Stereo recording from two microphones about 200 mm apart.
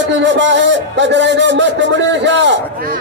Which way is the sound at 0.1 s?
65° right (ahead or behind).